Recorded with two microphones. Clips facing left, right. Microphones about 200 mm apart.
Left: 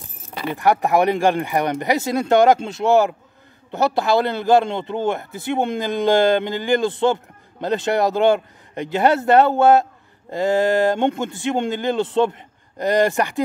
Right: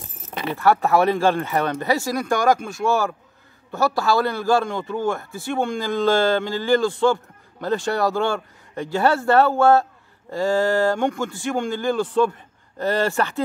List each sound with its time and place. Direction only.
0.5 s a man's voice: 15° left (ahead or behind)